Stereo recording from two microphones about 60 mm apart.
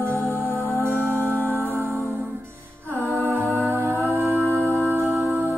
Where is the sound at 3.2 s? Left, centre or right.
Right.